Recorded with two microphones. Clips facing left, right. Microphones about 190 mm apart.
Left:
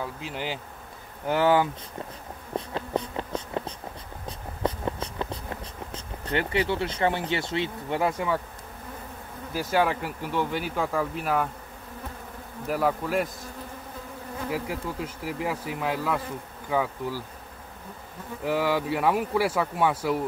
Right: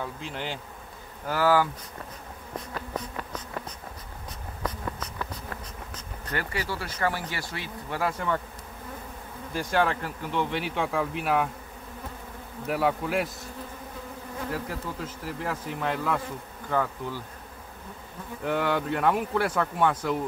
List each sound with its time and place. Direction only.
0.0 s speech: 5° left (ahead or behind)
1.2 s speech: 20° left (ahead or behind)
2.5 s insect: 25° left (ahead or behind)
4.3 s writing: 25° left (ahead or behind)
5.9 s speech: 25° left (ahead or behind)
9.5 s speech: 5° left (ahead or behind)
12.6 s speech: centre (ahead or behind)
15.2 s speech: 10° left (ahead or behind)
18.4 s speech: 5° left (ahead or behind)